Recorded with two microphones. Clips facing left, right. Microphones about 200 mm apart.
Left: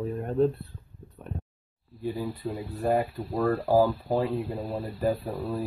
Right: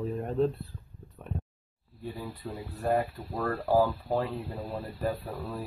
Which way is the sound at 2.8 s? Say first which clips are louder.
Left 2 dB; 5° left (ahead or behind).